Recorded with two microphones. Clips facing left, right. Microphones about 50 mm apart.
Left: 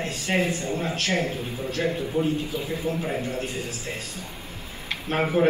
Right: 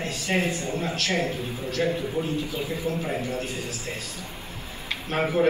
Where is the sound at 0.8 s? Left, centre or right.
Left.